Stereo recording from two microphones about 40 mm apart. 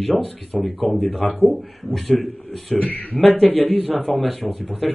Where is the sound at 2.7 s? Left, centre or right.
Left.